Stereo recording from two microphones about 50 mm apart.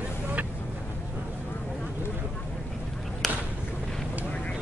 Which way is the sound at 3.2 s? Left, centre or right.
Centre.